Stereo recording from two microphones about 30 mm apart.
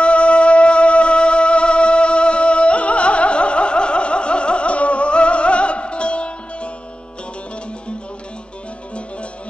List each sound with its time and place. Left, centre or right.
0.0 s music: left